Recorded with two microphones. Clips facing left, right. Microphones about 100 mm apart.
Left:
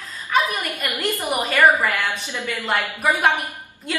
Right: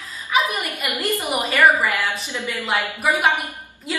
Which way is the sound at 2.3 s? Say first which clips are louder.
Even; 15° right (ahead or behind).